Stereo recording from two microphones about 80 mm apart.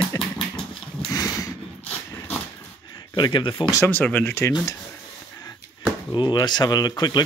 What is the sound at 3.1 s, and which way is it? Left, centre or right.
Speech, left.